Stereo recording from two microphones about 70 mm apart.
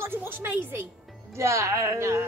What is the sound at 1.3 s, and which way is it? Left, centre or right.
Speech, right.